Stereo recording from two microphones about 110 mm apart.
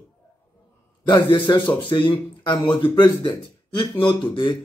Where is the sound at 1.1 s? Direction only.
45° left (ahead or behind).